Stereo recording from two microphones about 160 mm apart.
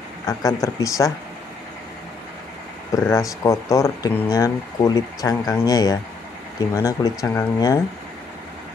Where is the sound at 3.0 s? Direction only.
20° left (ahead or behind).